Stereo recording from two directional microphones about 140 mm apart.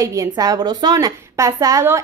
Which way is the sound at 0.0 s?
25° right (ahead or behind).